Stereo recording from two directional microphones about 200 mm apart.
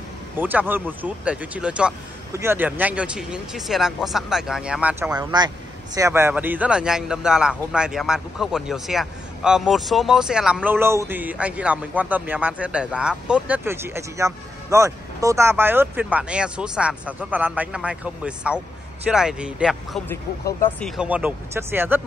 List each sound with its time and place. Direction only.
0.4 s speech: 10° right (ahead or behind)
5.1 s speech: 20° right (ahead or behind)